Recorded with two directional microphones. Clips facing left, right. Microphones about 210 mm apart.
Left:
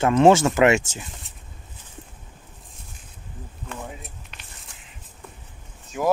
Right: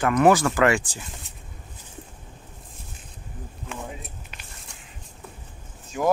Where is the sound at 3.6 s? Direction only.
Centre (ahead or behind).